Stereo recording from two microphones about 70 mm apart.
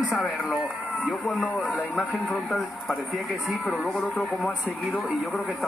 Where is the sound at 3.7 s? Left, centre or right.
Centre.